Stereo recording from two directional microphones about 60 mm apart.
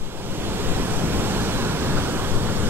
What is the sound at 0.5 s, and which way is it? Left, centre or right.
Waves, right.